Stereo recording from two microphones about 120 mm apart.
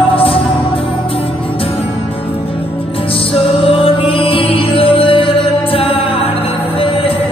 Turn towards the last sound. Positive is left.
turn(degrees=50)  # may be behind; listen again after turning